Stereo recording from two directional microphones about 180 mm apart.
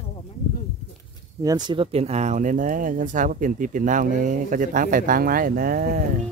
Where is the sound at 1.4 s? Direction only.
20° right (ahead or behind); by 5.9 s 55° right (ahead or behind).